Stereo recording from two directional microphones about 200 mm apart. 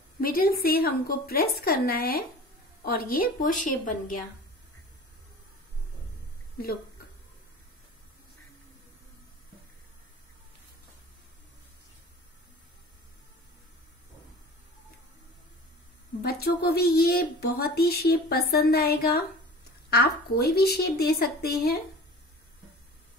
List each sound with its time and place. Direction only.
0.2 s speech: 45° left (ahead or behind)
16.2 s speech: 50° left (ahead or behind)